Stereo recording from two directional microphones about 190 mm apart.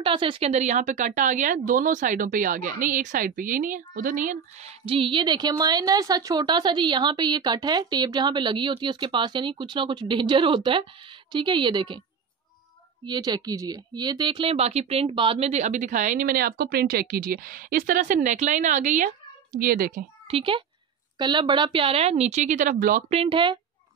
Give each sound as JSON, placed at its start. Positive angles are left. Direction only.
{"t": 0.0, "sound": "a woman's voice", "side_deg": -25}
{"t": 13.0, "sound": "a child's voice", "side_deg": -20}
{"t": 20.2, "sound": "a woman's voice", "side_deg": -30}
{"t": 23.1, "sound": "a woman's voice", "side_deg": -30}